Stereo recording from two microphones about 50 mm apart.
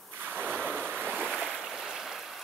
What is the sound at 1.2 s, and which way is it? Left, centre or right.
Boat, centre.